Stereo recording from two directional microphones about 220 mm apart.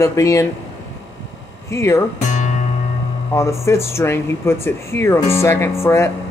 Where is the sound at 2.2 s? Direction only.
35° left (ahead or behind).